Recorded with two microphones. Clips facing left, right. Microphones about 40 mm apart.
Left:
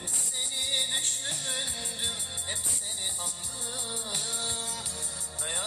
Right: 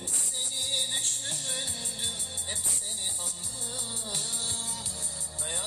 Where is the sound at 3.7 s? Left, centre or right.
Left.